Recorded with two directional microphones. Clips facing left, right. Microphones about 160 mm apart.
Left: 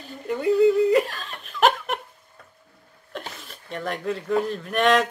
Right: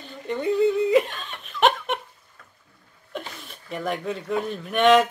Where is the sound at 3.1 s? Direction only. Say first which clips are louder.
Right 1 dB; centre (ahead or behind).